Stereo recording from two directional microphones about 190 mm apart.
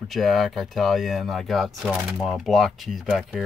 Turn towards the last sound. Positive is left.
turn(degrees=0)  # may be behind; listen again after turning